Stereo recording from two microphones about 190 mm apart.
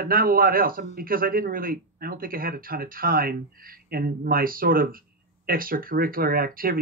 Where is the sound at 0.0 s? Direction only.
50° right (ahead or behind).